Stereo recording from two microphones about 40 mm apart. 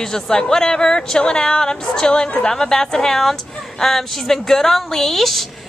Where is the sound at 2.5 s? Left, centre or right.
Centre.